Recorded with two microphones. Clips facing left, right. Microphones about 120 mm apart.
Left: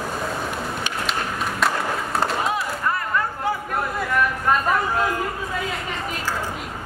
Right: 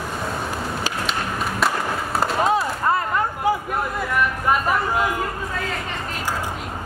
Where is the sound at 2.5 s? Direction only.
25° right (ahead or behind).